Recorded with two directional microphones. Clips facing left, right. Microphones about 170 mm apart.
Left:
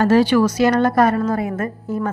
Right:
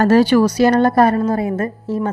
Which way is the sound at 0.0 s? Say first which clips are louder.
Right 2 dB; 40° right (ahead or behind).